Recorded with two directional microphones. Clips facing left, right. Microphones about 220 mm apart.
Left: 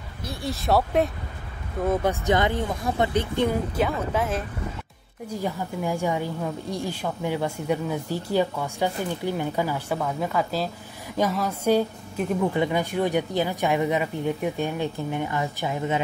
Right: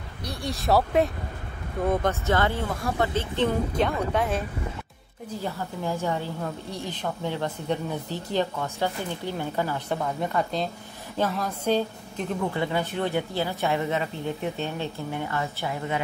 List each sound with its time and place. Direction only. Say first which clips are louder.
0.2 s speech: left 1 dB; centre (ahead or behind)
1.9 s a woman's voice: left 2 dB; 15° left (ahead or behind)
5.4 s a woman's voice: left 3 dB; 15° left (ahead or behind)